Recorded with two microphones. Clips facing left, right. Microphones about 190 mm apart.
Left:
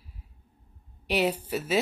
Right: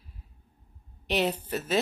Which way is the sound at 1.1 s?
10° left (ahead or behind).